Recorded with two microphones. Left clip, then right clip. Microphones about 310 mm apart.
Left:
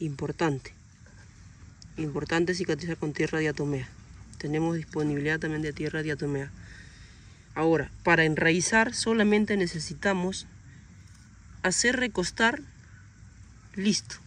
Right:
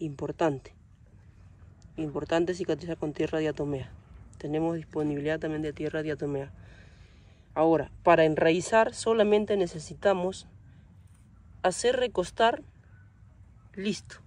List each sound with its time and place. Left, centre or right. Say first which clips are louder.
0.0 s speech: right 1 dB; centre
1.8 s speech: even; centre
11.6 s speech: even; centre
13.7 s speech: left 5 dB; centre